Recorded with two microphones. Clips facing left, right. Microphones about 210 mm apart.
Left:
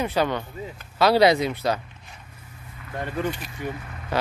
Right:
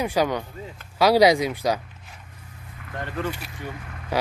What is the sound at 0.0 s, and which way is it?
Speech, 10° right (ahead or behind).